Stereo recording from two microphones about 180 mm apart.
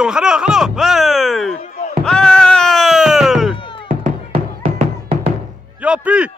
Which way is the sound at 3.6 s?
30° left (ahead or behind).